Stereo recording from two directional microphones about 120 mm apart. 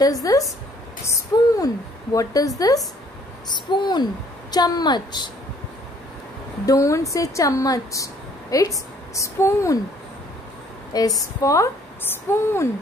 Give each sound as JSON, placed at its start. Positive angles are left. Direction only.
{"t": 0.0, "sound": "a woman's voice", "side_deg": 30}
{"t": 6.6, "sound": "speech", "side_deg": 30}
{"t": 10.9, "sound": "speech", "side_deg": 30}